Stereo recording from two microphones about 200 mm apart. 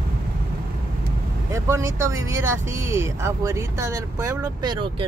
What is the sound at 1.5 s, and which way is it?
Speech, 15° right (ahead or behind).